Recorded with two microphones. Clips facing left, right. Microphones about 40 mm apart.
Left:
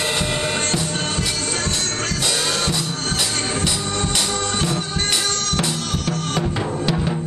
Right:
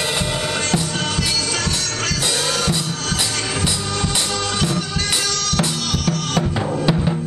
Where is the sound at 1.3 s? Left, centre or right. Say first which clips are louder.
Right 2 dB; left.